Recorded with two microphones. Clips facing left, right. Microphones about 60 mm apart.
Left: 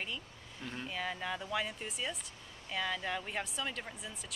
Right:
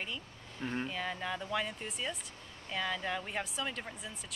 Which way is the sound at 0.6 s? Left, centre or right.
Right.